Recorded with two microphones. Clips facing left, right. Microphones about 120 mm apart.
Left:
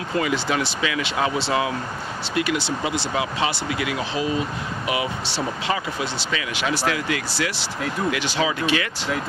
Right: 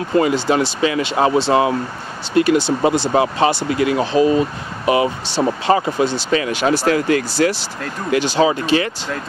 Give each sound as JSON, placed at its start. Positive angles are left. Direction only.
{"t": 0.2, "sound": "speech", "side_deg": -35}